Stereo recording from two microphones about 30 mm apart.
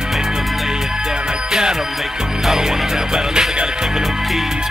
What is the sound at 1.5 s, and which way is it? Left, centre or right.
Music, right.